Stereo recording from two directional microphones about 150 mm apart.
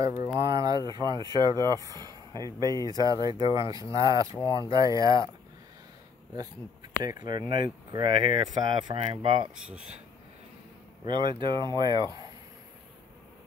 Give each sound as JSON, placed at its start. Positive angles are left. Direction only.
{"t": 0.0, "sound": "speech", "side_deg": -20}
{"t": 7.0, "sound": "speech", "side_deg": -25}
{"t": 11.1, "sound": "speech", "side_deg": -35}